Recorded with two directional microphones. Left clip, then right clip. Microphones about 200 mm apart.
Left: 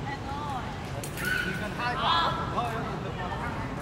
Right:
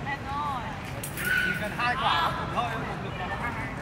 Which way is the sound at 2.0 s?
55° right (ahead or behind).